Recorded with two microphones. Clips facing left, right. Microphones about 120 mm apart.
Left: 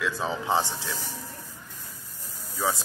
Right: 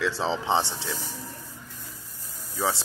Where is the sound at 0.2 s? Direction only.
25° right (ahead or behind).